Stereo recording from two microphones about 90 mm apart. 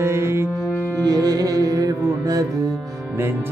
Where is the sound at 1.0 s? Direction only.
45° right (ahead or behind).